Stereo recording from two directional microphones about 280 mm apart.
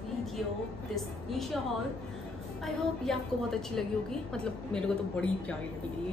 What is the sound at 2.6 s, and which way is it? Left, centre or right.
A woman's voice, centre.